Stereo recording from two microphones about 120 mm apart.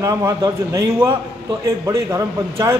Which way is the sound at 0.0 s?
25° right (ahead or behind).